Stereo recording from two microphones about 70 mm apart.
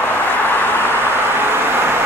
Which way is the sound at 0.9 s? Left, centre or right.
Right.